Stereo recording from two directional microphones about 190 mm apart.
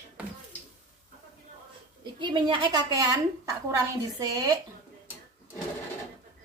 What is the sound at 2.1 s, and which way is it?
A woman's voice, 25° right (ahead or behind).